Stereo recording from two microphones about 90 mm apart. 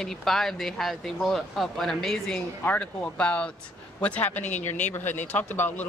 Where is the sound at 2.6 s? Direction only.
20° left (ahead or behind).